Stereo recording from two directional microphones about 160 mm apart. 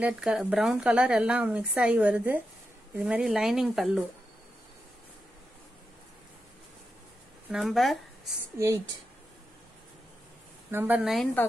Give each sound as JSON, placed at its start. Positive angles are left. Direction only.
{"t": 0.0, "sound": "speech", "side_deg": -5}
{"t": 7.4, "sound": "speech", "side_deg": 0}
{"t": 8.5, "sound": "speech", "side_deg": -20}
{"t": 10.7, "sound": "speech", "side_deg": -10}
{"t": 11.4, "sound": "a woman's voice", "side_deg": 10}